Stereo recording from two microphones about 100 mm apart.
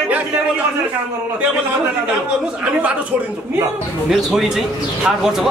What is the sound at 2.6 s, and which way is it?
Speech, 10° right (ahead or behind).